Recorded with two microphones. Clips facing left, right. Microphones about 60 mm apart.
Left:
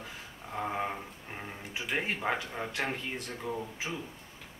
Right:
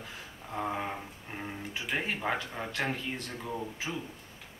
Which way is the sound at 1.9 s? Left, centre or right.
Centre.